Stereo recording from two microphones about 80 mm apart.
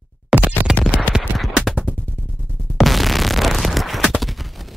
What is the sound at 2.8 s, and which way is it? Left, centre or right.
Music, centre.